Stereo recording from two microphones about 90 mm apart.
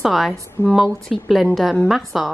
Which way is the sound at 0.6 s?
30° left (ahead or behind).